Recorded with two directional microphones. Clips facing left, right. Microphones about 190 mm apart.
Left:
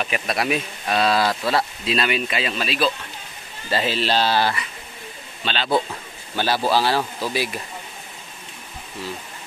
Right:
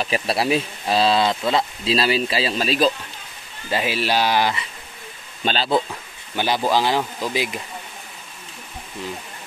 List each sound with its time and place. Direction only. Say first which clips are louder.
0.0 s speech: right 2 dB; 30° right (ahead or behind)
1.9 s speech: right 5 dB; 30° right (ahead or behind)
3.7 s speech: even; 10° right (ahead or behind)
5.4 s speech: right 3 dB; 40° right (ahead or behind)
6.3 s speech: even; 15° right (ahead or behind)